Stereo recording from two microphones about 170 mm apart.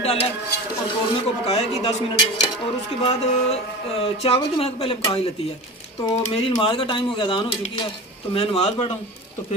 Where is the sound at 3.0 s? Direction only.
35° left (ahead or behind).